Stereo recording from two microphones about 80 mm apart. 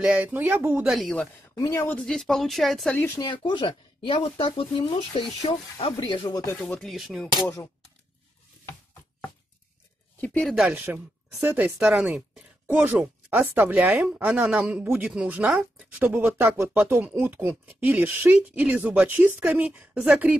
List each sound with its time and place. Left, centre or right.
0.0 s speech: centre
0.8 s speech: centre
1.7 s speech: left
2.0 s speech: centre
3.2 s speech: left
6.2 s speech: left
6.5 s speech: centre
6.8 s speech: centre
10.4 s speech: centre
10.7 s speech: right
11.8 s a man's voice: centre
15.9 s speech: right
19.4 s a man's voice: centre
19.7 s speech: right